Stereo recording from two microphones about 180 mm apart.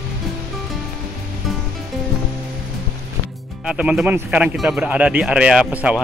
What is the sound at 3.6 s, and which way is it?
Speech, 5° right (ahead or behind).